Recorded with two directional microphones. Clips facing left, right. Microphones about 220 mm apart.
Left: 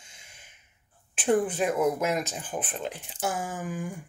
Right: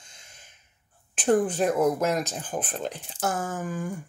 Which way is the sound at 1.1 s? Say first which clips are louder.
Right 2 dB; 40° right (ahead or behind).